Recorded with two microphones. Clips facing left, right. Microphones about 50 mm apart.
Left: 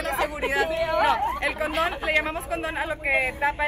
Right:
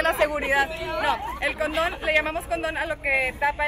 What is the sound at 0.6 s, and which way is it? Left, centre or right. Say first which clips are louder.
Speech: left 4 dB; left.